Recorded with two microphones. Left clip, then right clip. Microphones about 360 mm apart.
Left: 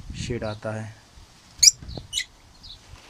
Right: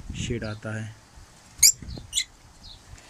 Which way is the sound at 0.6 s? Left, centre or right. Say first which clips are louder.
Left 4 dB; left.